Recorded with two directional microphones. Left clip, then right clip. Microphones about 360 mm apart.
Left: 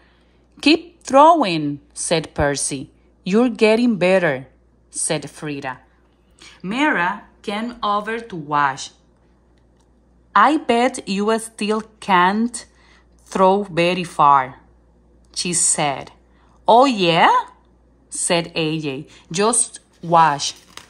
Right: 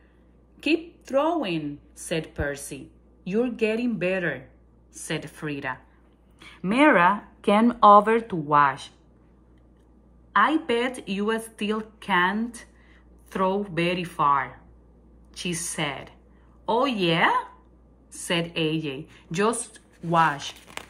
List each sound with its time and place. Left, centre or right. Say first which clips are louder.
0.6 s a woman's voice: left 9 dB; centre
10.3 s a woman's voice: left 7 dB; centre